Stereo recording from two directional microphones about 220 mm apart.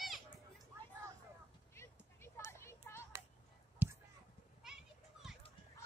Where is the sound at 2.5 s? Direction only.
10° left (ahead or behind).